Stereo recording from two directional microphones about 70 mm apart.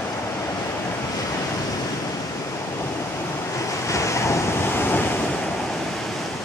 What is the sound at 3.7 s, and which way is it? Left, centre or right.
Waves, left.